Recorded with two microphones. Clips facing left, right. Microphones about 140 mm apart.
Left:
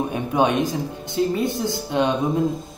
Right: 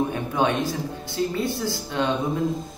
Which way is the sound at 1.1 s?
20° left (ahead or behind).